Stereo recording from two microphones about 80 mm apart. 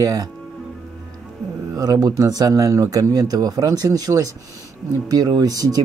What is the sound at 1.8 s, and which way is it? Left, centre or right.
Speech, right.